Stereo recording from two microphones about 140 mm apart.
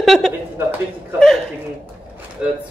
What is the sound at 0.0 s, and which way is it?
Speech, centre (ahead or behind).